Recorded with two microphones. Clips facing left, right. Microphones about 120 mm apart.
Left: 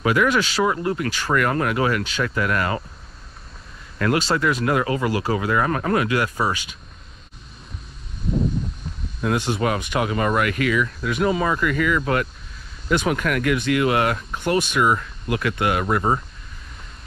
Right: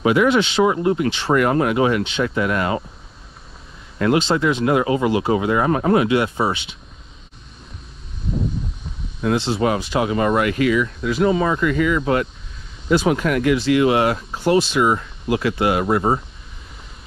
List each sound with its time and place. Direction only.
0.0 s speech: 20° right (ahead or behind)
4.0 s speech: 25° right (ahead or behind)
8.3 s a sound: centre (ahead or behind)
9.5 s speech: 30° right (ahead or behind)